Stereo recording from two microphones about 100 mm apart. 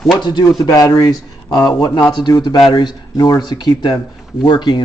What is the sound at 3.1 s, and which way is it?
Speech, 40° left (ahead or behind).